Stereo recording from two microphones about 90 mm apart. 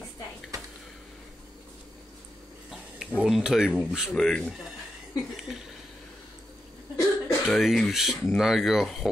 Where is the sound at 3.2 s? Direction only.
5° right (ahead or behind).